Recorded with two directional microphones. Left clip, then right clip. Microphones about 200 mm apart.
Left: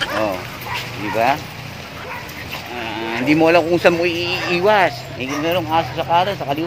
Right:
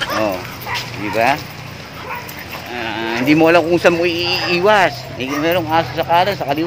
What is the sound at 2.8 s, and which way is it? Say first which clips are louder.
Speech: right 3 dB; 15° right (ahead or behind).